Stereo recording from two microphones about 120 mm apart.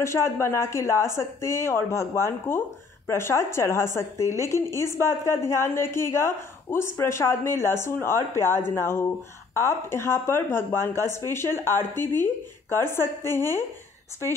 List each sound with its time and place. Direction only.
0.0 s a woman's voice: 25° left (ahead or behind)